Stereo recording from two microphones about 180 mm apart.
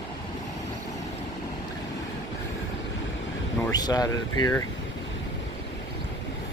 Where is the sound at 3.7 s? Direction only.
20° left (ahead or behind).